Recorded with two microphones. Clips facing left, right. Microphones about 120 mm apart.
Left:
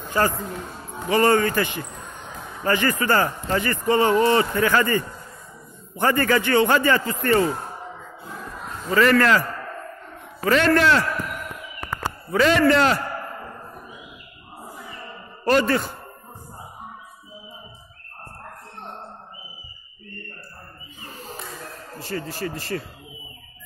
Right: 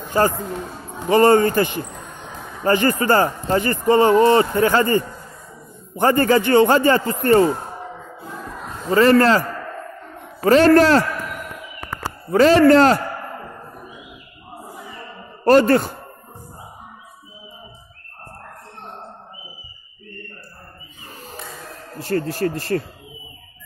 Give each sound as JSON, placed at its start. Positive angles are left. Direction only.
{"t": 0.2, "sound": "speech", "side_deg": -35}
{"t": 8.8, "sound": "speech", "side_deg": -30}
{"t": 10.4, "sound": "speech", "side_deg": -35}
{"t": 12.3, "sound": "speech", "side_deg": -40}
{"t": 15.4, "sound": "a man's voice", "side_deg": -40}
{"t": 21.9, "sound": "speech", "side_deg": -55}